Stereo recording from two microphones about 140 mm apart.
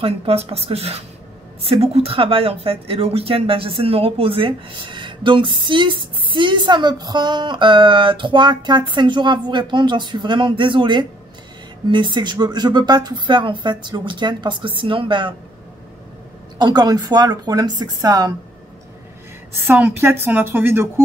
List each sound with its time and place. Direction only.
0.0 s a woman's voice: 45° right (ahead or behind)
16.5 s speech: 30° right (ahead or behind)
19.7 s a woman's voice: 15° right (ahead or behind)